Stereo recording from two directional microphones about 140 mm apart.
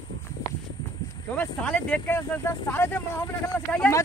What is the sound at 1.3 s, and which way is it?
Speech, 10° left (ahead or behind).